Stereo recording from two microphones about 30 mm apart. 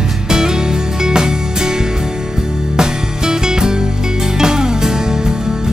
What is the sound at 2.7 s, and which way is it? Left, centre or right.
Music, right.